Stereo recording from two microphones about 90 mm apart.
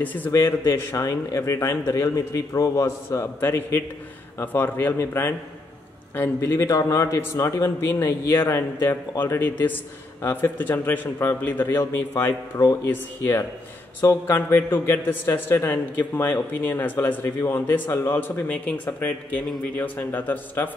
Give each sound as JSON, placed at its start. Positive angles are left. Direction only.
{"t": 0.0, "sound": "a man's voice", "side_deg": 20}
{"t": 0.3, "sound": "a man's voice", "side_deg": 35}
{"t": 12.5, "sound": "a man's voice", "side_deg": 35}